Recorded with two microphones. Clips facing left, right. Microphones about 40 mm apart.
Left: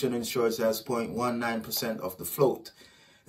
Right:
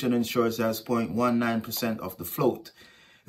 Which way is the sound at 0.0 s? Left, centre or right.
Right.